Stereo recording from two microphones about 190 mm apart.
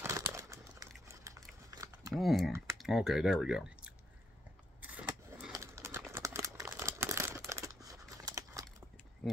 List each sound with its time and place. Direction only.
0.0 s crumpling: 15° right (ahead or behind)
1.7 s a sound: 15° right (ahead or behind)
2.1 s speech: centre (ahead or behind)
2.5 s typing: 15° right (ahead or behind)
2.8 s speech: centre (ahead or behind)
4.8 s vehicle: 10° right (ahead or behind)
5.5 s a sound: 15° right (ahead or behind)
6.6 s crumpling: 15° right (ahead or behind)